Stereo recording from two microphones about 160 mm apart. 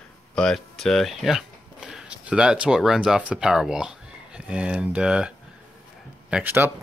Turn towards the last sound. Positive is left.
turn(degrees=-10)  # may be behind; listen again after turning